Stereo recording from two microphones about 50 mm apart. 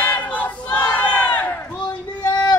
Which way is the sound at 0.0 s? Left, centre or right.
Left.